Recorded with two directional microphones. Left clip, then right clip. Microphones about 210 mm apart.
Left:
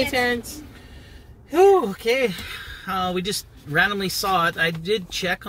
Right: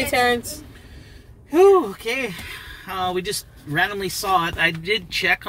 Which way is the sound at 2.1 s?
10° left (ahead or behind).